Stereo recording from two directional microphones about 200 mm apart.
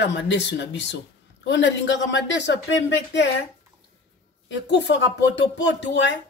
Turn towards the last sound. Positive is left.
turn(degrees=65)  # may be behind; listen again after turning